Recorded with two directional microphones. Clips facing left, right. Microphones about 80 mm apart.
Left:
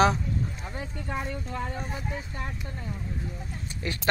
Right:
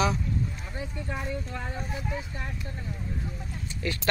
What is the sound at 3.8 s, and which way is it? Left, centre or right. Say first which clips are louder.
Speech: right 2 dB; left.